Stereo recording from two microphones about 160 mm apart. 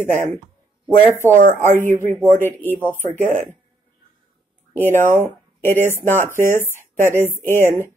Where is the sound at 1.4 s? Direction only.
55° right (ahead or behind).